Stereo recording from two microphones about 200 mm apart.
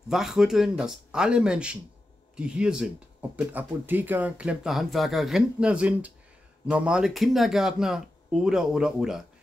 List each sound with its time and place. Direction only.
0.1 s speech: centre (ahead or behind)